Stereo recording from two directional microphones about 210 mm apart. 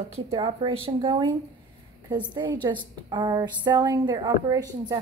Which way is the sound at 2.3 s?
20° right (ahead or behind).